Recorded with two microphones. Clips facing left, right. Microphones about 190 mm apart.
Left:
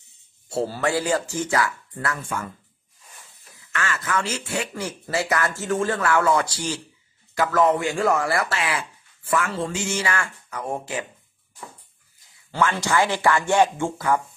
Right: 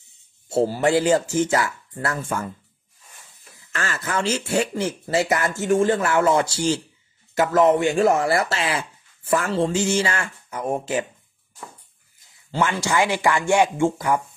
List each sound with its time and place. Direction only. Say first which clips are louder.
0.5 s speech: right 5 dB; 20° right (ahead or behind); by 2.4 s 35° right (ahead or behind)
3.7 s speech: even; 35° right (ahead or behind)
12.4 s speech: even; 15° right (ahead or behind)